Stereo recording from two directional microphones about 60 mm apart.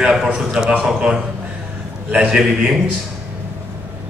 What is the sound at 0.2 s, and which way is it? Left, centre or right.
A man's voice, centre.